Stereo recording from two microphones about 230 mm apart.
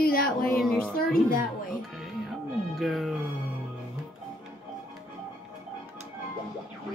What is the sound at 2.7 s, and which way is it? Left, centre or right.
Speech, centre.